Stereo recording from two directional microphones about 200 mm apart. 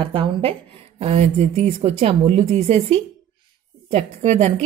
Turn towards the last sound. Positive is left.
turn(degrees=-35)  # may be behind; listen again after turning